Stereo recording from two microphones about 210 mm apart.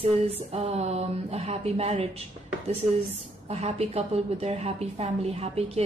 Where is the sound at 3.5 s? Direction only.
30° right (ahead or behind).